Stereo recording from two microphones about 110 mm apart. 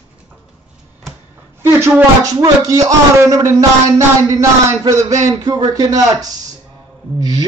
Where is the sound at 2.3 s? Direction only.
30° right (ahead or behind).